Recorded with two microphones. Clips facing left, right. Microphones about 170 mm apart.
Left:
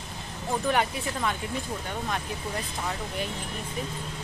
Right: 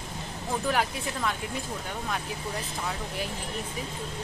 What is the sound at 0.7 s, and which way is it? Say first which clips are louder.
Speech: left 2 dB; centre (ahead or behind).